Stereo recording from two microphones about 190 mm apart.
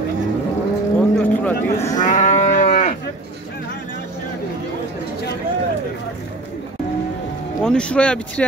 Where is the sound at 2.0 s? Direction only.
40° left (ahead or behind).